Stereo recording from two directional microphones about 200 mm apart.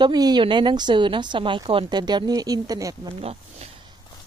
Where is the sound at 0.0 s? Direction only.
20° right (ahead or behind).